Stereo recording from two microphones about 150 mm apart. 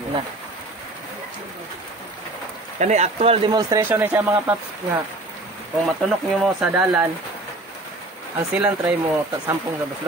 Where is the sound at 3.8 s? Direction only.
15° right (ahead or behind).